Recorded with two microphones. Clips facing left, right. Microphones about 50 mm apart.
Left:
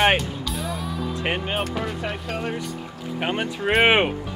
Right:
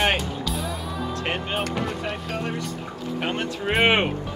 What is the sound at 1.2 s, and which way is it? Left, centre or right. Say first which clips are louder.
Speech: left 4 dB; centre.